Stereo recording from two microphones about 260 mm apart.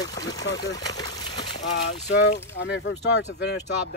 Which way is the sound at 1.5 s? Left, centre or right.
Left.